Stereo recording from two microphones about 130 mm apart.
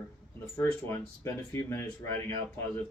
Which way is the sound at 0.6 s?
15° left (ahead or behind).